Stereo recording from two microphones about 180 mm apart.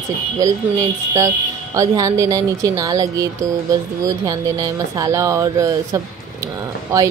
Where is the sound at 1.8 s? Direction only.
20° right (ahead or behind).